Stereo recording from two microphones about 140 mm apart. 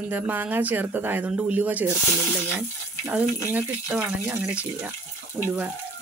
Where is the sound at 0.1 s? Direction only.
15° right (ahead or behind).